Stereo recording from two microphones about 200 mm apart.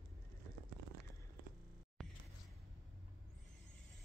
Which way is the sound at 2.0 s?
Centre (ahead or behind).